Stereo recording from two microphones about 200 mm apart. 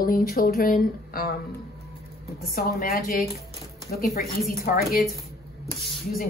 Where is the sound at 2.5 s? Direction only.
50° left (ahead or behind).